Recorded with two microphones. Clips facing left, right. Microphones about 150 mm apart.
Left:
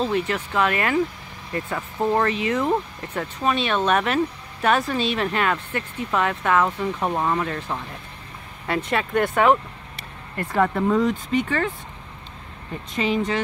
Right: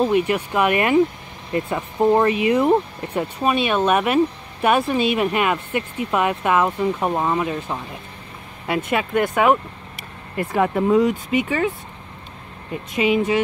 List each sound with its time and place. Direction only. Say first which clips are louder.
0.0 s speech: right 5 dB; 15° right (ahead or behind)
12.9 s speech: right 4 dB; 15° right (ahead or behind)